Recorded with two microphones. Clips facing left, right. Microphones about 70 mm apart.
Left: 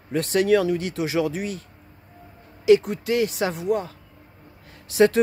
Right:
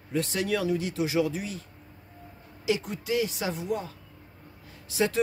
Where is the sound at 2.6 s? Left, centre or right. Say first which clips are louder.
Left 11 dB; left.